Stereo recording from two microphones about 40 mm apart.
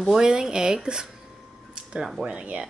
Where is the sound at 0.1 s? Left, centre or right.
Centre.